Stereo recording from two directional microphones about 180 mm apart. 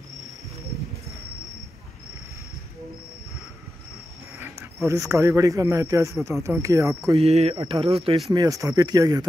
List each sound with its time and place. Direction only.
4.8 s speech: 15° right (ahead or behind)
7.2 s speech: 35° right (ahead or behind)
8.3 s speech: 20° right (ahead or behind)